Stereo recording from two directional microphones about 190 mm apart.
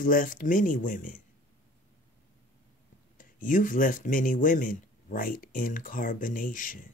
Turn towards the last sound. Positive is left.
turn(degrees=45)  # may be behind; listen again after turning